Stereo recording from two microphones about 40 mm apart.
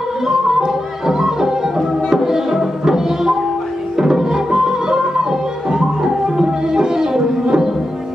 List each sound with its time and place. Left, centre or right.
0.3 s music: centre